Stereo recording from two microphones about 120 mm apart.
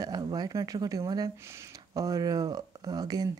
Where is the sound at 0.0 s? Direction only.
35° right (ahead or behind).